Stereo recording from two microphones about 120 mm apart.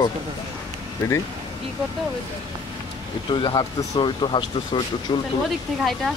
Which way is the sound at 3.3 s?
40° left (ahead or behind).